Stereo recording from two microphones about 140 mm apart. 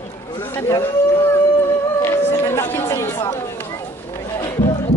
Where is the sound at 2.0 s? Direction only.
20° left (ahead or behind).